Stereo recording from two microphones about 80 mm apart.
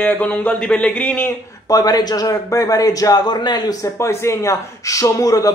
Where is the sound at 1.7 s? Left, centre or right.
Left.